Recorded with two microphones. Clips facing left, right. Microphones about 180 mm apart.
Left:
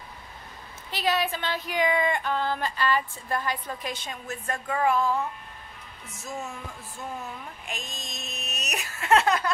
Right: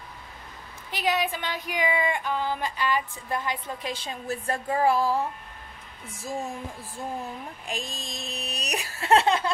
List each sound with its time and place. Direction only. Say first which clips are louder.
0.9 s speech: even; 15° right (ahead or behind)